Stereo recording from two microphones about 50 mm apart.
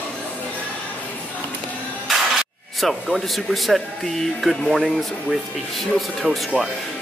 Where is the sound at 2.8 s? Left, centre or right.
Centre.